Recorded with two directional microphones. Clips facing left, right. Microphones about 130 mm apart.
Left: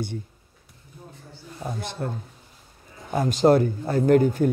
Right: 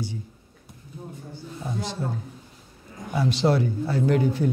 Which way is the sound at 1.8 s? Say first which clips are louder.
Right 3 dB; 55° left (ahead or behind).